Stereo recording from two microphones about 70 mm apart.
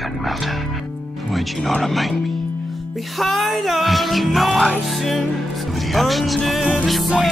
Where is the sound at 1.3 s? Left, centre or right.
Centre.